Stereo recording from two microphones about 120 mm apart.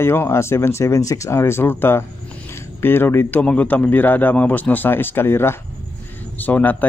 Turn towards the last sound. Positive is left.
turn(degrees=15)  # may be behind; listen again after turning